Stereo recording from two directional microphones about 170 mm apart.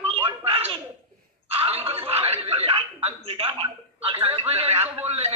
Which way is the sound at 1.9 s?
35° right (ahead or behind).